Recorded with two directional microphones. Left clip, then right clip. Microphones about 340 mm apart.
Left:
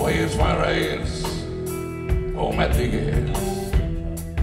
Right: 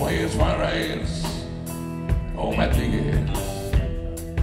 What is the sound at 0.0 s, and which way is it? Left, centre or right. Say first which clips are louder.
Music: left 2 dB; left.